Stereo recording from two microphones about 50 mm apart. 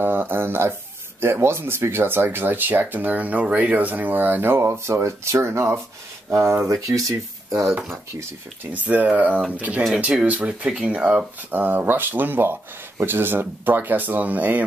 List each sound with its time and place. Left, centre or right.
0.0 s speech: right
8.6 s speech: right
11.5 s speech: right